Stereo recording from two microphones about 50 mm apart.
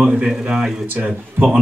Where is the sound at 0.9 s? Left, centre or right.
Right.